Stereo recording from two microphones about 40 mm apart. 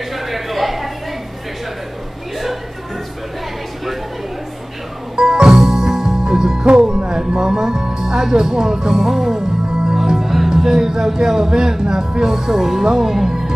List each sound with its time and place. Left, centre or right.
0.1 s a sound: centre
5.1 s music: centre
9.9 s speech: centre